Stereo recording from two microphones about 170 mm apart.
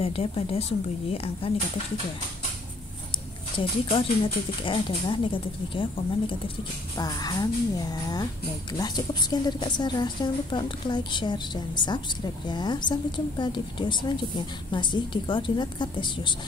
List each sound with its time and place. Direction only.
0.0 s speech: 35° left (ahead or behind)
3.5 s a woman's voice: 30° left (ahead or behind)